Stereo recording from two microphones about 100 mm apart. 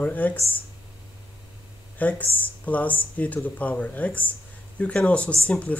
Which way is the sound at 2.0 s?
15° left (ahead or behind).